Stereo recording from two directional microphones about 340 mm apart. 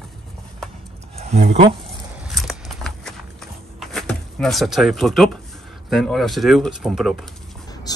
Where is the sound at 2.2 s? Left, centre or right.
Centre.